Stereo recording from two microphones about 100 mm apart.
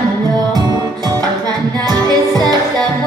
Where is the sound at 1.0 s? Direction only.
40° right (ahead or behind).